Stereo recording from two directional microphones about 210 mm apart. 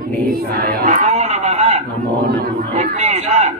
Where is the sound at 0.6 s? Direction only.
45° right (ahead or behind).